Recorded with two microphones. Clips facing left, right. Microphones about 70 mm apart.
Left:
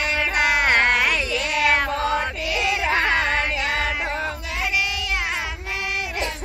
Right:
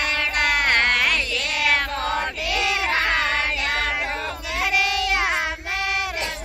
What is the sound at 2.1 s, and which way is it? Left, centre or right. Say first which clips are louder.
Chant: left 1 dB; centre.